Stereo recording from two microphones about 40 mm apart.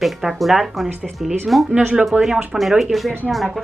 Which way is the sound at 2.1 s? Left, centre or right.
Right.